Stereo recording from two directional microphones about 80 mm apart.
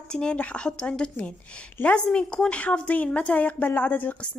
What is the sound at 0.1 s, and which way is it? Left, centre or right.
A woman's voice, centre.